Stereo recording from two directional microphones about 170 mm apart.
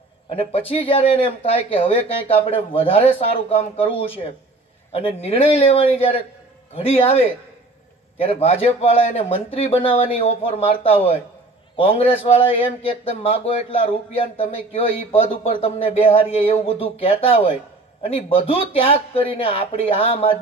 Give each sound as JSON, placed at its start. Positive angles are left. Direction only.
{"t": 0.5, "sound": "speech", "side_deg": 35}
{"t": 11.7, "sound": "speech", "side_deg": 35}